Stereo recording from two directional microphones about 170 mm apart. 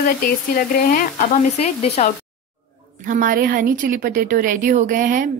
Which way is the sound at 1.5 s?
40° left (ahead or behind).